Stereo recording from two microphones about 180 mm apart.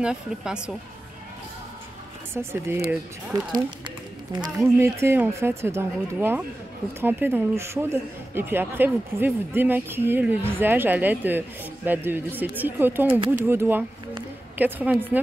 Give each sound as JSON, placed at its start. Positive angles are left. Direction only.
{"t": 0.0, "sound": "speech", "side_deg": -5}
{"t": 2.4, "sound": "a woman's voice", "side_deg": -10}
{"t": 3.3, "sound": "speech", "side_deg": -25}
{"t": 4.7, "sound": "a woman's voice", "side_deg": -15}